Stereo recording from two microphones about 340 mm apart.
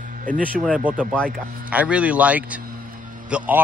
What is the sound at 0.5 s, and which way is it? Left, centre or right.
Speech, centre.